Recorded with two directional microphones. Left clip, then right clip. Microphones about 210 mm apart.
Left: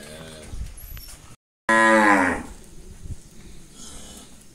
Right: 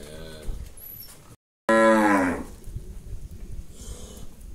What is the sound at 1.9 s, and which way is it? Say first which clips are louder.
Moo: left 5 dB; 35° left (ahead or behind).